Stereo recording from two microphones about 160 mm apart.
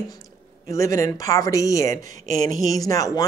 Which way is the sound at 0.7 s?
20° left (ahead or behind).